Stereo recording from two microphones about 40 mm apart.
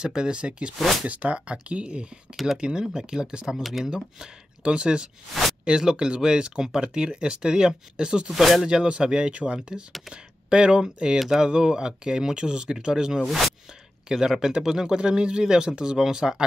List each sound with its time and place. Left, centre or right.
0.0 s speech: centre
2.3 s speech: centre
2.6 s speech: centre
3.6 s speech: centre
3.9 s speech: right
8.3 s speech: centre
8.6 s speech: right
11.1 s speech: centre
11.4 s speech: centre